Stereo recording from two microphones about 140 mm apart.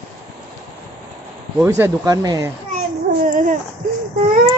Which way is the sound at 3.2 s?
75° right (ahead or behind).